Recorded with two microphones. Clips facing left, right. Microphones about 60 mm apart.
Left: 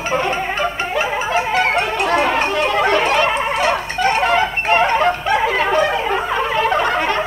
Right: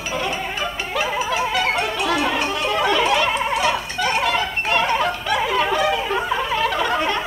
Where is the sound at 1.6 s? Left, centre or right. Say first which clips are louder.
Left 4 dB; left.